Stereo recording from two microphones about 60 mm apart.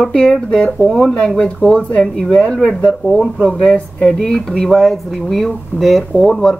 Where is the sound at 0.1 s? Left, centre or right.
Centre.